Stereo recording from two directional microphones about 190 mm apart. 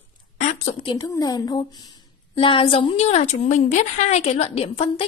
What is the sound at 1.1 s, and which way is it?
A woman's voice, 20° left (ahead or behind).